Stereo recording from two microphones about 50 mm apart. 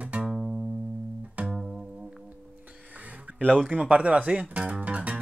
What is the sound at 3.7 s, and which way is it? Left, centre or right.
Speech, right.